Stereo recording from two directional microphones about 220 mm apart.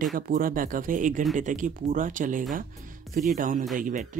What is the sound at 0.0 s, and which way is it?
Speech, 40° right (ahead or behind).